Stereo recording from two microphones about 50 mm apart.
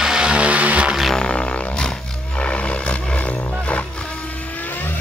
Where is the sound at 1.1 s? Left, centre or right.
Left.